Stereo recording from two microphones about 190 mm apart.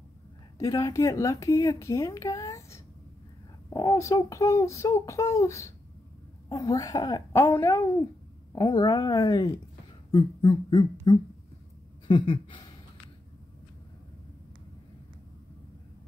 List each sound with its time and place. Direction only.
0.6 s a woman's voice: 15° left (ahead or behind)
8.5 s speech: 20° left (ahead or behind)